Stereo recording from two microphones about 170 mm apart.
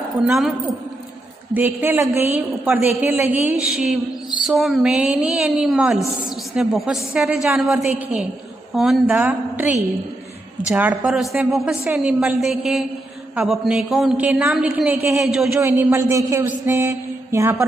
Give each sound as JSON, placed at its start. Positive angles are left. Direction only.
{"t": 0.3, "sound": "a woman's voice", "side_deg": 0}
{"t": 1.5, "sound": "a woman's voice", "side_deg": -10}
{"t": 15.8, "sound": "a woman's voice", "side_deg": -15}